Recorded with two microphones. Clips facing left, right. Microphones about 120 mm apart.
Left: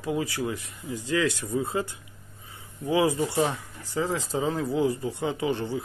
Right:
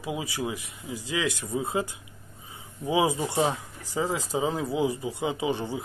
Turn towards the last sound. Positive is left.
turn(degrees=-15)  # may be behind; listen again after turning